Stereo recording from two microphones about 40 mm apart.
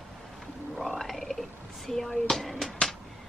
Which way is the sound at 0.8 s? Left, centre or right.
Centre.